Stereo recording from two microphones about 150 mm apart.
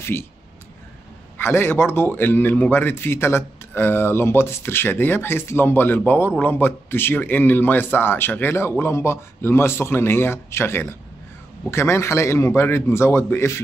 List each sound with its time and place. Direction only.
1.4 s a man's voice: 15° left (ahead or behind)